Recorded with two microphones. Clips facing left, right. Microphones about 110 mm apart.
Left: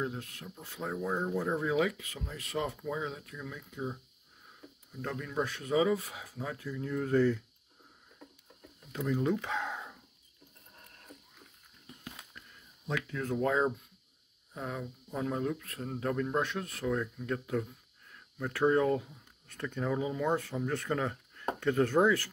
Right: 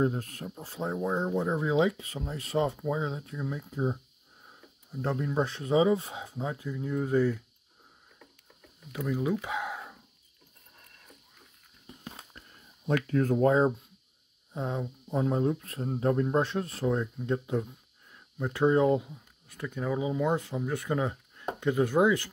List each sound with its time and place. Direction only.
0.0 s speech: 40° right (ahead or behind); by 7.4 s 10° right (ahead or behind)
8.9 s speech: 10° right (ahead or behind)
12.0 s a sound: 30° right (ahead or behind)
12.8 s speech: 55° right (ahead or behind); by 22.3 s 15° right (ahead or behind)